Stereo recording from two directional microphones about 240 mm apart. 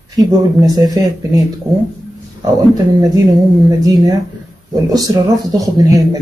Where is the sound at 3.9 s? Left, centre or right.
Centre.